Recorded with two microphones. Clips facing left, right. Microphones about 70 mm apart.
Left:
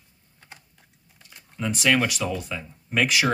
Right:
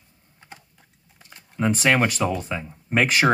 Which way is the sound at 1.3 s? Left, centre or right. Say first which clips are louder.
Right 6 dB; right.